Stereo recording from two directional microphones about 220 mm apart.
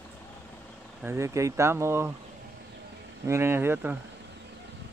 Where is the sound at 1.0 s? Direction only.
10° right (ahead or behind).